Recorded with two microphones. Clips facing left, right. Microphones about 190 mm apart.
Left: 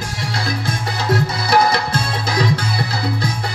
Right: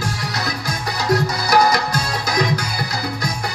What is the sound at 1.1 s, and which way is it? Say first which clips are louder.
Music: even; 30° left (ahead or behind).